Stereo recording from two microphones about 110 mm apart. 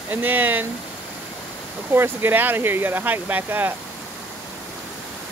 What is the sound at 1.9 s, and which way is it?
Speech, 20° right (ahead or behind).